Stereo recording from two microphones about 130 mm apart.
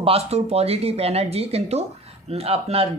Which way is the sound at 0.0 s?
50° right (ahead or behind).